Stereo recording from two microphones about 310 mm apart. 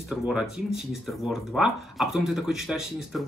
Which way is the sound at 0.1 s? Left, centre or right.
Centre.